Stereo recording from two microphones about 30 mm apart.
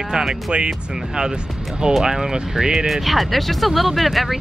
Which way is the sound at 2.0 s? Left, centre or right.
Right.